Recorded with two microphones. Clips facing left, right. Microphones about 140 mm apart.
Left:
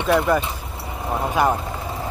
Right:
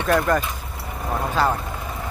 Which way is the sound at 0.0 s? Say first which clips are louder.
Left 1 dB; 15° left (ahead or behind).